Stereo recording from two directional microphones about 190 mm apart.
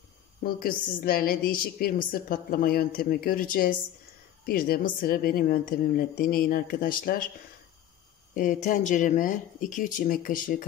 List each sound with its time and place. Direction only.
0.4 s a woman's voice: 50° left (ahead or behind)
8.4 s a woman's voice: 45° left (ahead or behind)